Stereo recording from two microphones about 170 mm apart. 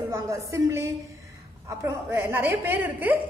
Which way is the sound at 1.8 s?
15° right (ahead or behind).